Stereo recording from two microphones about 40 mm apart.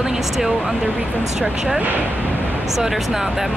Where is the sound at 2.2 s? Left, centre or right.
Left.